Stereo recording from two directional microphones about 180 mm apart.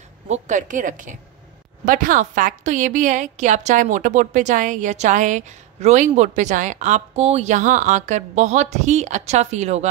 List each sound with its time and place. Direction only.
0.3 s a woman's voice: 45° right (ahead or behind)